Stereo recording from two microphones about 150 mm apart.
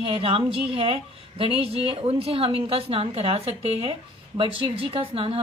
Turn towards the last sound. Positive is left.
turn(degrees=-35)  # may be behind; listen again after turning